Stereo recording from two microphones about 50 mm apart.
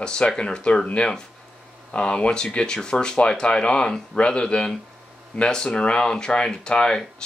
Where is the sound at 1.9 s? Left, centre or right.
Left.